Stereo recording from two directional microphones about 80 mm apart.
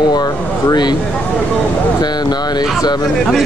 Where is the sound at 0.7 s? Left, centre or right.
Left.